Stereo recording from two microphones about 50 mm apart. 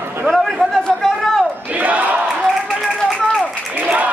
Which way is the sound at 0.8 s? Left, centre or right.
Centre.